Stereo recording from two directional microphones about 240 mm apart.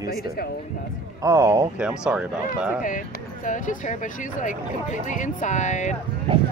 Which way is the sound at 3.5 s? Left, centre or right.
Left.